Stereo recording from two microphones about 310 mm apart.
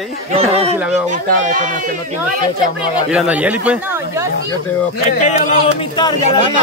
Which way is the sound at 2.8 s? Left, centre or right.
Centre.